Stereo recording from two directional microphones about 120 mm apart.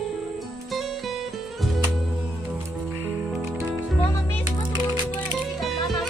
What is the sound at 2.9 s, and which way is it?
Music, 20° right (ahead or behind).